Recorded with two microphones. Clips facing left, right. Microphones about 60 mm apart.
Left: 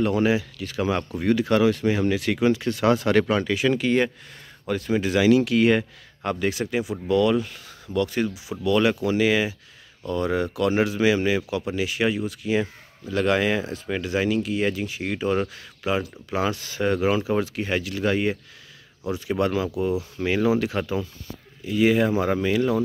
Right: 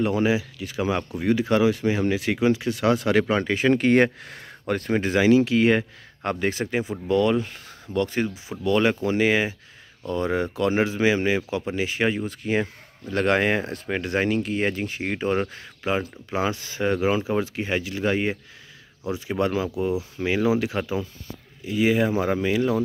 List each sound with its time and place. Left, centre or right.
0.0 s speech: centre
2.7 s speech: centre
3.3 s speech: right
5.1 s speech: right